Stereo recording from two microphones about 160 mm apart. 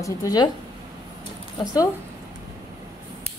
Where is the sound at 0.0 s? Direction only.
20° left (ahead or behind).